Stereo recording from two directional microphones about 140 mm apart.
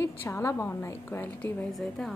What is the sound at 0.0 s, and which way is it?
A woman's voice, 20° left (ahead or behind).